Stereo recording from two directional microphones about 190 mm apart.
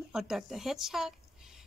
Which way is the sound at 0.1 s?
5° right (ahead or behind).